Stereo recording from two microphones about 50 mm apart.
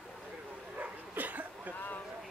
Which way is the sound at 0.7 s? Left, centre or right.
Right.